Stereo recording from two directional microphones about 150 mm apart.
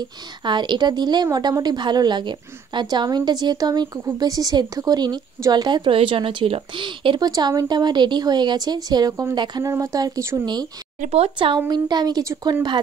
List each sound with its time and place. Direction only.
0.5 s a woman's voice: 30° right (ahead or behind)
11.0 s a woman's voice: 45° right (ahead or behind)